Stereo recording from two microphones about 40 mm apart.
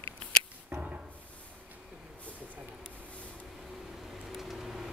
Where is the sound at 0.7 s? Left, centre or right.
Right.